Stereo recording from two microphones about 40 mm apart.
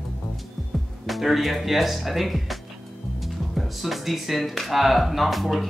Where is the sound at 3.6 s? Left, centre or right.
Centre.